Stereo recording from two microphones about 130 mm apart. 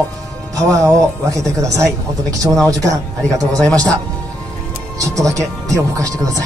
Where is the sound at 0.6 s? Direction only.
25° right (ahead or behind).